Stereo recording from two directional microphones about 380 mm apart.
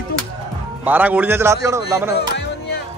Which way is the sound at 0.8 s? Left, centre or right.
Centre.